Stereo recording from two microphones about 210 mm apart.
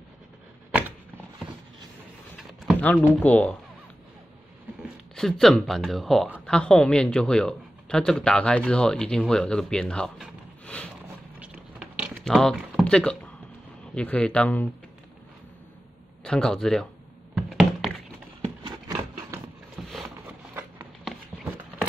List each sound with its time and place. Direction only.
2.3 s a sound: centre (ahead or behind)
3.2 s speech: 10° left (ahead or behind)
5.1 s speech: 5° left (ahead or behind)
11.3 s a sound: 5° right (ahead or behind)
13.9 s speech: 5° left (ahead or behind)
16.3 s speech: 5° left (ahead or behind)
17.4 s thunk: centre (ahead or behind)
18.7 s a sound: 20° right (ahead or behind)
19.8 s boat: centre (ahead or behind)